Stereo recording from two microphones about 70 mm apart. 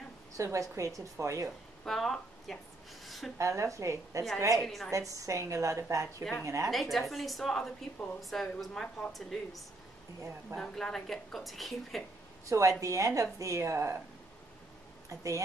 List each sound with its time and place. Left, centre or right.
0.4 s a woman's voice: right
1.9 s speech: centre
3.3 s a woman's voice: right
4.6 s a woman's voice: centre
4.9 s a woman's voice: right
6.7 s a woman's voice: centre
10.6 s a woman's voice: centre
12.4 s a woman's voice: right
15.0 s a woman's voice: right